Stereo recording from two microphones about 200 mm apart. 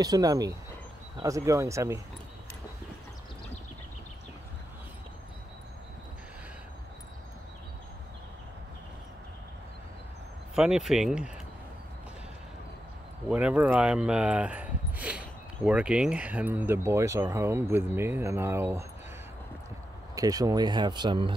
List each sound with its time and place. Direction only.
0.0 s speech: 20° right (ahead or behind)
10.5 s speech: 5° right (ahead or behind)
13.3 s speech: 5° right (ahead or behind)
20.2 s speech: 20° right (ahead or behind)